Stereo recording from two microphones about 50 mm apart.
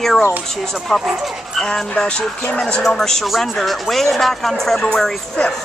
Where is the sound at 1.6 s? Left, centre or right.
Centre.